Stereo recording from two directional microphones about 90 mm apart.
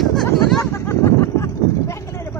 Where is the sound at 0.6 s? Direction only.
30° left (ahead or behind).